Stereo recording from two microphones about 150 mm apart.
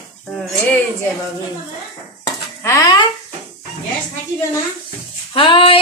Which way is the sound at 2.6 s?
20° left (ahead or behind).